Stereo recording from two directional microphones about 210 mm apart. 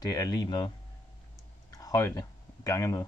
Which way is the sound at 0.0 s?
15° left (ahead or behind).